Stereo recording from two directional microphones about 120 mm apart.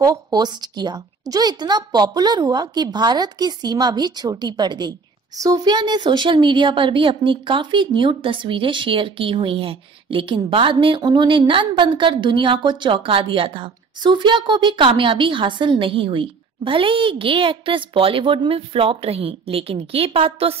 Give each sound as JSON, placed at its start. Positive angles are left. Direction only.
{"t": 0.0, "sound": "a woman's voice", "side_deg": -35}